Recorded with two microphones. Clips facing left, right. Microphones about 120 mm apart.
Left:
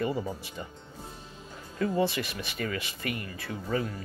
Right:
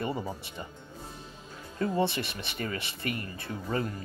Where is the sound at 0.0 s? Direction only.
30° right (ahead or behind).